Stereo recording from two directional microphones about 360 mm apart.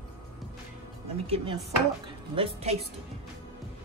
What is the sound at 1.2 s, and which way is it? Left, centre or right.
A woman's voice, centre.